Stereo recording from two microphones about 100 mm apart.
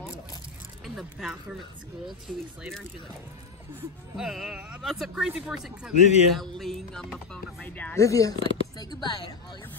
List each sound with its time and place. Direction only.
0.8 s speech: 5° right (ahead or behind)
4.2 s speech: centre (ahead or behind)
7.6 s speech: 15° left (ahead or behind)
7.9 s speech: 30° left (ahead or behind)